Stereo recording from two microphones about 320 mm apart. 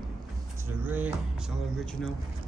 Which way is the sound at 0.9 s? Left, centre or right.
Centre.